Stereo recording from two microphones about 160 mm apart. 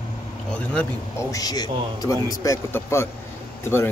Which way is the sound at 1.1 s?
25° left (ahead or behind).